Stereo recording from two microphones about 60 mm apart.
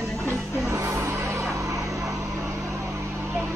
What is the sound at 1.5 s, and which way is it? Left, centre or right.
Vehicle, right.